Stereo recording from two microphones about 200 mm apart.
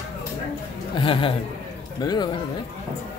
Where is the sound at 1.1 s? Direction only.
25° left (ahead or behind).